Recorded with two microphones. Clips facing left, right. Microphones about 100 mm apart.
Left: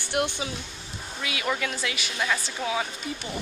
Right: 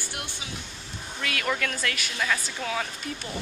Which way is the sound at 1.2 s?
5° left (ahead or behind).